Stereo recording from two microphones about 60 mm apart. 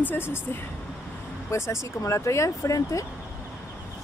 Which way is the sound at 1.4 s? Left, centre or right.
Left.